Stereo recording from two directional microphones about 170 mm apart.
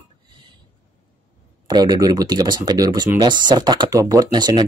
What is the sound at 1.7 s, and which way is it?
Speech, 20° right (ahead or behind).